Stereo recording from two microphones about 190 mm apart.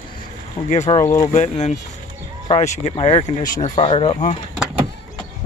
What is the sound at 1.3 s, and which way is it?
Speech, 35° left (ahead or behind).